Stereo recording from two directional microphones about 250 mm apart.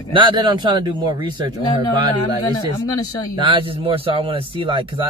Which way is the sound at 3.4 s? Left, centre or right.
Right.